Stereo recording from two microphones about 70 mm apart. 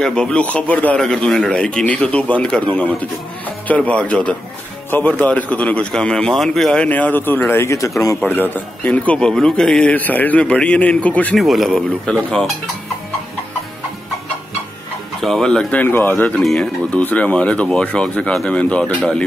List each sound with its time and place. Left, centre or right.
0.0 s a man's voice: centre
0.9 s a man's voice: centre
6.7 s a man's voice: centre; by 7.9 s left
8.3 s a man's voice: left
9.3 s speech: centre
9.9 s a man's voice: left
11.3 s speech: centre
12.1 s speech: centre
15.2 s speech: centre
15.8 s a man's voice: left
16.3 s speech: centre